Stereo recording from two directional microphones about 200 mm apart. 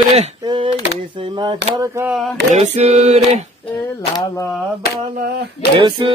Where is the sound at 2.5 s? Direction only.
35° right (ahead or behind).